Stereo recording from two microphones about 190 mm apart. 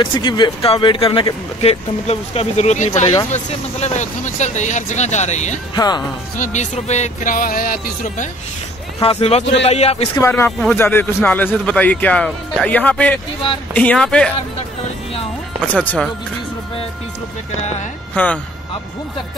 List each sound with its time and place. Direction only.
0.0 s speech: 25° left (ahead or behind)
5.8 s speech: 20° left (ahead or behind)
6.3 s speech: 40° left (ahead or behind)
9.0 s speech: 30° left (ahead or behind)
10.2 s a man's voice: 15° left (ahead or behind)
15.6 s a man's voice: 10° left (ahead or behind)
18.1 s speech: 10° left (ahead or behind)